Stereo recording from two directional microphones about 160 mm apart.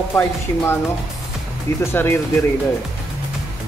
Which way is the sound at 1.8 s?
15° left (ahead or behind).